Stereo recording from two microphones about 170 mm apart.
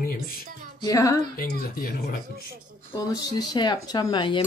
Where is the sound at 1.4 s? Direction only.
65° left (ahead or behind).